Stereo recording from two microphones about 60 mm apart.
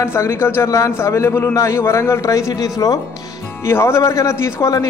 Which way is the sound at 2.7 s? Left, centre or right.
Left.